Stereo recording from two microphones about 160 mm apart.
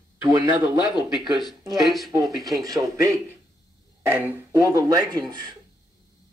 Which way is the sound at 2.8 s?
20° right (ahead or behind).